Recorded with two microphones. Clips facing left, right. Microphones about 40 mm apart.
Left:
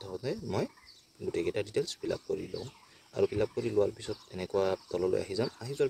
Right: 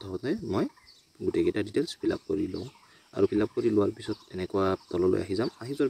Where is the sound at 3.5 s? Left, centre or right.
Centre.